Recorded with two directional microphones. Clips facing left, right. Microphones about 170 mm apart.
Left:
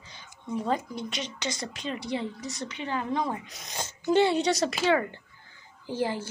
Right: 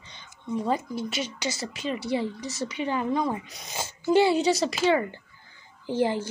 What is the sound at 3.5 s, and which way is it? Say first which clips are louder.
Speech: right 2 dB; centre (ahead or behind).